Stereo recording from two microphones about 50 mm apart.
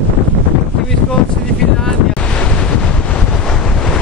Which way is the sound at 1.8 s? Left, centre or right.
Centre.